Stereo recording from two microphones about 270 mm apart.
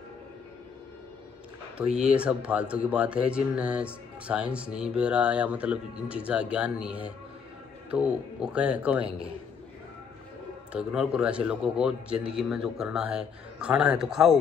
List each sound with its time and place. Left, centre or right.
1.8 s speech: centre
10.7 s speech: centre